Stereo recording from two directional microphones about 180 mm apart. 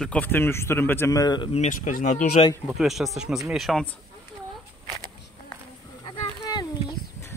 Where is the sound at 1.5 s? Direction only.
40° left (ahead or behind).